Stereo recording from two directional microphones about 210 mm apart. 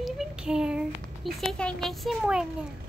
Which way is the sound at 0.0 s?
5° right (ahead or behind).